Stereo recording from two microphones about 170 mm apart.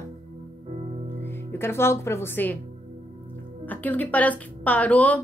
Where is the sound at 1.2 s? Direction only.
15° left (ahead or behind).